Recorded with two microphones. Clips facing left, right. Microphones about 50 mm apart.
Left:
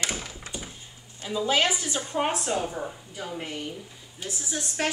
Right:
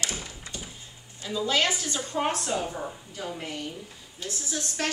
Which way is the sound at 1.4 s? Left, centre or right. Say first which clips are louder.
Left 2 dB; centre.